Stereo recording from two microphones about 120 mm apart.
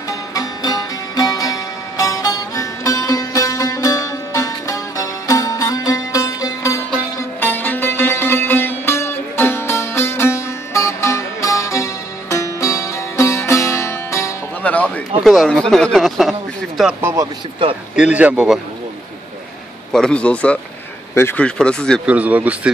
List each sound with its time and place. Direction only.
0.3 s music: 30° left (ahead or behind)
14.6 s music: 10° left (ahead or behind)
15.2 s speech: centre (ahead or behind)
17.0 s speech: 25° right (ahead or behind)
17.9 s speech: 10° right (ahead or behind)
19.9 s a man's voice: 5° left (ahead or behind)
21.5 s a man's voice: 10° left (ahead or behind)
22.0 s speech: 10° right (ahead or behind)